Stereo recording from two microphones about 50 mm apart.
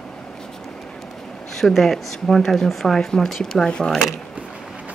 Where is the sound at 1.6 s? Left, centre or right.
Centre.